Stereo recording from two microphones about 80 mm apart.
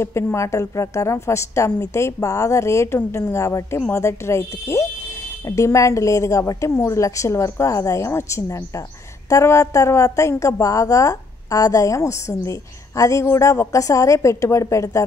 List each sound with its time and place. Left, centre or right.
0.0 s a woman's voice: left